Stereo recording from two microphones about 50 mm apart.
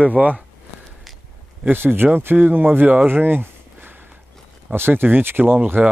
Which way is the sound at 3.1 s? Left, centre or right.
Right.